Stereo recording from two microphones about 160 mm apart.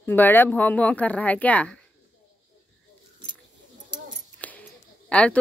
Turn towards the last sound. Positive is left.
turn(degrees=5)  # may be behind; listen again after turning